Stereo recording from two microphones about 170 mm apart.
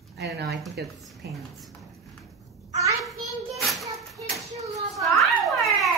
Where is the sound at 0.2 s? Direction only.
75° right (ahead or behind).